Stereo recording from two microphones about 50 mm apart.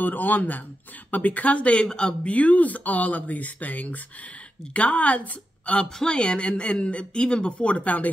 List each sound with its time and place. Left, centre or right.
0.0 s speech: left; by 2.1 s centre
2.2 s speech: left